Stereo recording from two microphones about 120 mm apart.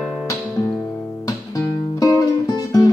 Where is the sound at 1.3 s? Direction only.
30° left (ahead or behind).